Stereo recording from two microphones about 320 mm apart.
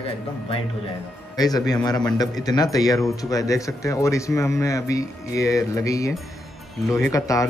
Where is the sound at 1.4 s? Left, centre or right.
Centre.